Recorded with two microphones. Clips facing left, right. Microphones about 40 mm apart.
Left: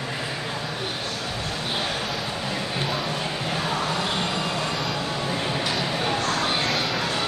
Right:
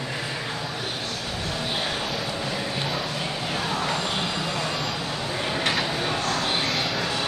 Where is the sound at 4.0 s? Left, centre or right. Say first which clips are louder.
Left 1 dB; centre.